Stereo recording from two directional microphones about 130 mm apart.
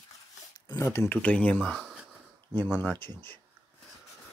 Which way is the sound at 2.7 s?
15° left (ahead or behind).